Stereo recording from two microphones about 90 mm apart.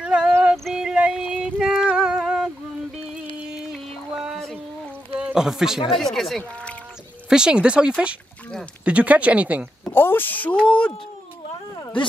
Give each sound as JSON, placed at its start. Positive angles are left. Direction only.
{"t": 0.0, "sound": "a sound", "side_deg": -10}
{"t": 2.0, "sound": "humming", "side_deg": -5}
{"t": 3.7, "sound": "a sound", "side_deg": -5}
{"t": 5.2, "sound": "speech", "side_deg": -5}
{"t": 6.5, "sound": "rowboat", "side_deg": 15}
{"t": 7.2, "sound": "speech", "side_deg": -10}
{"t": 9.9, "sound": "speech", "side_deg": 25}